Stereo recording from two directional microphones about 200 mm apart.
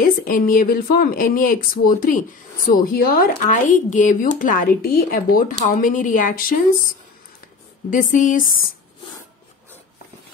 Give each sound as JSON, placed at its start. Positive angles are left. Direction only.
{"t": 0.0, "sound": "speech", "side_deg": 45}
{"t": 7.9, "sound": "speech", "side_deg": 40}